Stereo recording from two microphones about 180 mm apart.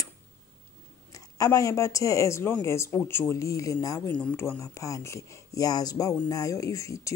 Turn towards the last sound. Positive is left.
turn(degrees=15)  # may be behind; listen again after turning